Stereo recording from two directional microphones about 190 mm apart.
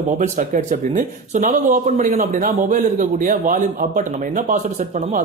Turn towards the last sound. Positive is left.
turn(degrees=-40)  # may be behind; listen again after turning